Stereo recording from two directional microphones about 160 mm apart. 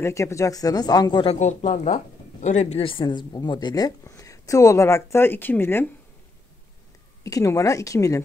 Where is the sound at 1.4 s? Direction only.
45° left (ahead or behind); by 5.8 s 15° left (ahead or behind).